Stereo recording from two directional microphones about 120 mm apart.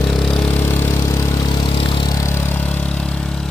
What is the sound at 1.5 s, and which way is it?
Vehicle, 45° left (ahead or behind).